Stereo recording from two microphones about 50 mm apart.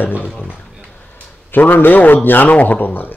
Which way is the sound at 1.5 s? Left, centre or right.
Left.